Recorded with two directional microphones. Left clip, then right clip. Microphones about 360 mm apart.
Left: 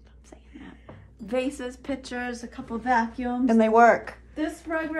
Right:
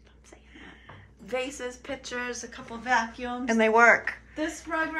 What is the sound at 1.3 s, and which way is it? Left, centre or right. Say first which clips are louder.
A woman's voice: left 3 dB; left.